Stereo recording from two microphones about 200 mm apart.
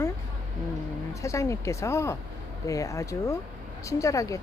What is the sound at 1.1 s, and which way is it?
Speech, 15° left (ahead or behind).